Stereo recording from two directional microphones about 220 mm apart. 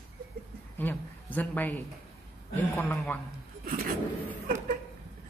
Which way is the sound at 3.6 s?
40° right (ahead or behind).